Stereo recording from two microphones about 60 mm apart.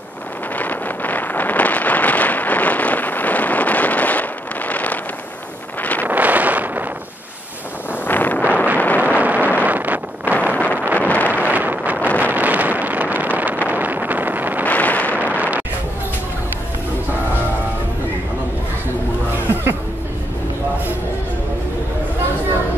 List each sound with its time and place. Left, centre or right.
0.6 s a sound: left
5.8 s wind noise: left
6.0 s wind noise: right
8.1 s wind noise: left
8.4 s wind noise: left
9.2 s vehicle: right
9.6 s wind noise: right
10.5 s wind noise: left
11.3 s wind noise: right
12.2 s vehicle: right
13.7 s wind noise: right
14.6 s wind noise: left
15.1 s a sound: right